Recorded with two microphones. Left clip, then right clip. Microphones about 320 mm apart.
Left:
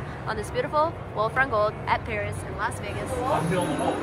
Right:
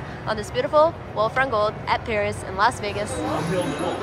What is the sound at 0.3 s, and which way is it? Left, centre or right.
Speech, centre.